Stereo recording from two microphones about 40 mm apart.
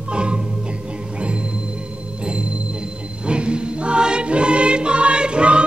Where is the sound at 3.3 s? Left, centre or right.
Right.